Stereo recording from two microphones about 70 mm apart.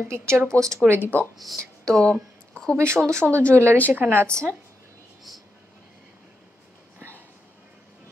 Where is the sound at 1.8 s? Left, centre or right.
Centre.